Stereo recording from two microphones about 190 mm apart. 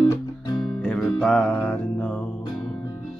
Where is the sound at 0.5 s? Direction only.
Centre (ahead or behind).